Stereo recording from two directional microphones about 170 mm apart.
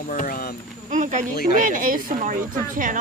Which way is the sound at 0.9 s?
45° right (ahead or behind).